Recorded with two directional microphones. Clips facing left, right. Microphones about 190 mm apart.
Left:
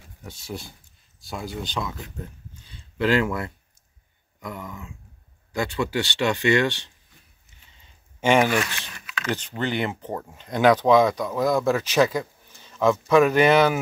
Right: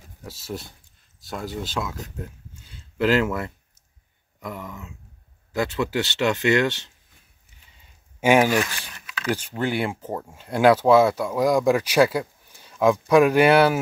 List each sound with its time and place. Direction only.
0.3 s speech: centre (ahead or behind)
2.5 s a sound: 5° right (ahead or behind)
4.4 s speech: centre (ahead or behind)
8.2 s speech: 10° right (ahead or behind)